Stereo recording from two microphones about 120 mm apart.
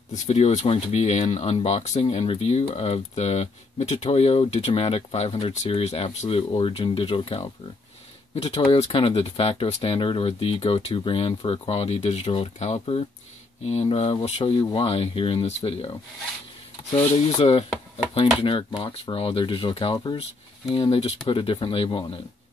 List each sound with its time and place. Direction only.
0.1 s speech: 70° left (ahead or behind)
5.7 s speech: 55° left (ahead or behind)
17.4 s speech: 60° left (ahead or behind)